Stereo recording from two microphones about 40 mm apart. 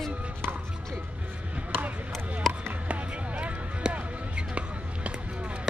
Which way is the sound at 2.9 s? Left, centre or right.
Right.